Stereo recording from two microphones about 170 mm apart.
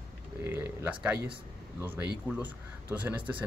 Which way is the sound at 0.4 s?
10° right (ahead or behind).